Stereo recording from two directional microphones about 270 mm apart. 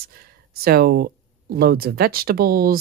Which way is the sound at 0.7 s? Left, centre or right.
Right.